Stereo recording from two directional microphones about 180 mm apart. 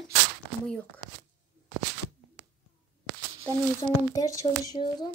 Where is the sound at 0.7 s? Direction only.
5° left (ahead or behind).